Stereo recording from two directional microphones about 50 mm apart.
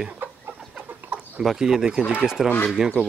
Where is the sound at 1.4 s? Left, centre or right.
Centre.